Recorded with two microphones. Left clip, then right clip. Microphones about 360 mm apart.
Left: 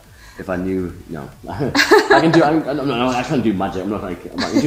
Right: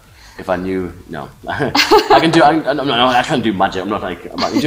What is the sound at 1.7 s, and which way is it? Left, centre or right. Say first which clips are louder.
Speech: right 2 dB; centre.